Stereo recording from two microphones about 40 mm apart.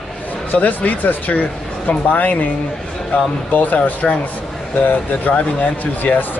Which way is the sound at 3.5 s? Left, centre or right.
Left.